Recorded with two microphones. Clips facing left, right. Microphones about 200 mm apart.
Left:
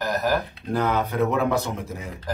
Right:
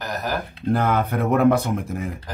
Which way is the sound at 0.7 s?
55° right (ahead or behind).